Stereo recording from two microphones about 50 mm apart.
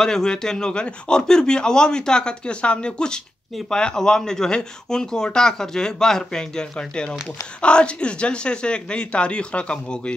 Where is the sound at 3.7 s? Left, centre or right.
Centre.